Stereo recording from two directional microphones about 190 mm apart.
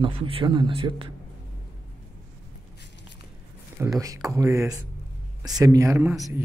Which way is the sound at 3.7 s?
15° right (ahead or behind).